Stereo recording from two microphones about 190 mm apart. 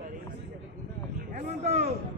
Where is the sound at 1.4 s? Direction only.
35° right (ahead or behind).